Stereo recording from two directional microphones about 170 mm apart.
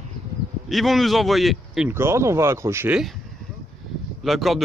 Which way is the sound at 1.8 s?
15° right (ahead or behind).